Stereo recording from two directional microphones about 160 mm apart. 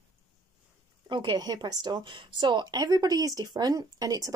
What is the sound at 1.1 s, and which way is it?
Speech, 30° right (ahead or behind).